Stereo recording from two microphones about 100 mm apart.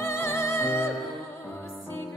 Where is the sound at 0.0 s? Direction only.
25° left (ahead or behind).